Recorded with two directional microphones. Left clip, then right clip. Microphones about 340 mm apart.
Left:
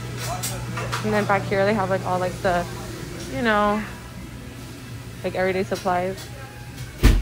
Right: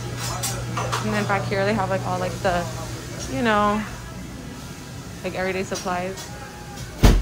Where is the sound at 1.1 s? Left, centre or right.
Centre.